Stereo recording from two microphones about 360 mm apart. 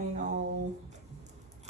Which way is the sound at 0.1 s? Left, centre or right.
Right.